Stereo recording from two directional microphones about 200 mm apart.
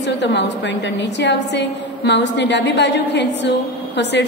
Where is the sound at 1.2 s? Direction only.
60° left (ahead or behind).